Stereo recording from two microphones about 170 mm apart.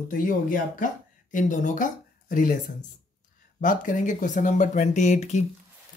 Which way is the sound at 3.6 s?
50° left (ahead or behind).